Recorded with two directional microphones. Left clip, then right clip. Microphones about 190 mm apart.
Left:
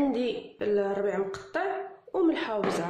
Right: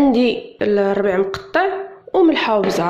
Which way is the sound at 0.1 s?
30° right (ahead or behind).